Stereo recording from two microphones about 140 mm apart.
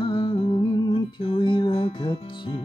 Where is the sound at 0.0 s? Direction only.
35° left (ahead or behind).